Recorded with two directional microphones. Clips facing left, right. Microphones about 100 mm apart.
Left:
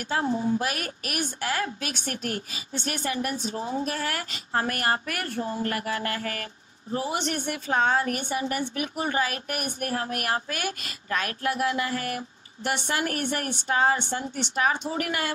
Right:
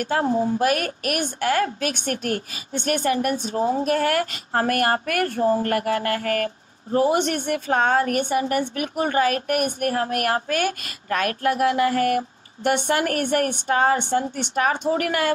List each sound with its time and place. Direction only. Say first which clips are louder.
0.0 s a woman's voice: right 5 dB; 45° right (ahead or behind)